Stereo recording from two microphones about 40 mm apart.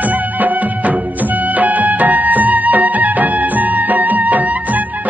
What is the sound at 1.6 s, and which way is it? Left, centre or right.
Music, right.